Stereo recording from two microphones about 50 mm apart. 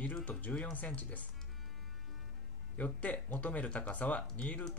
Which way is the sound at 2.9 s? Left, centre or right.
Left.